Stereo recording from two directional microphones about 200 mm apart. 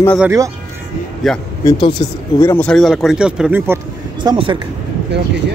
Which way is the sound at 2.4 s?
10° left (ahead or behind).